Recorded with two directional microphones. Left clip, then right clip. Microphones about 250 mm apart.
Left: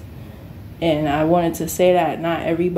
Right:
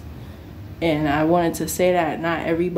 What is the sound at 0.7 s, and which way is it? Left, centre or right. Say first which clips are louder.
Speech: left 2 dB; centre.